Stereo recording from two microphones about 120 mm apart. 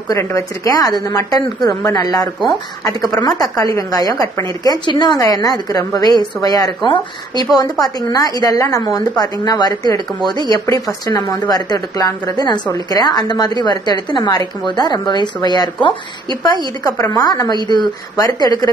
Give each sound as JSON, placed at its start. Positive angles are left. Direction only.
{"t": 0.1, "sound": "a woman's voice", "side_deg": 25}